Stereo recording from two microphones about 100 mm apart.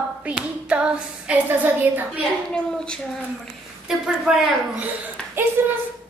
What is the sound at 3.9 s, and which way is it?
Wail, 5° right (ahead or behind).